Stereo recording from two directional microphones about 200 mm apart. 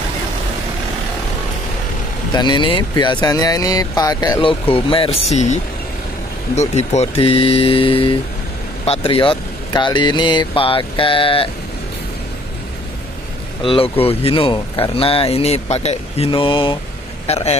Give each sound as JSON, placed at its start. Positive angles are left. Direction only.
{"t": 2.3, "sound": "speech", "side_deg": 20}
{"t": 13.6, "sound": "speech", "side_deg": 25}